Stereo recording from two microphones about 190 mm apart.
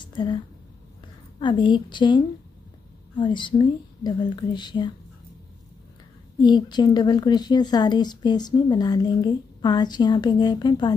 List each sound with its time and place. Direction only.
0.0 s a sound: 25° left (ahead or behind)
1.4 s speech: 25° left (ahead or behind)
6.4 s speech: 25° left (ahead or behind)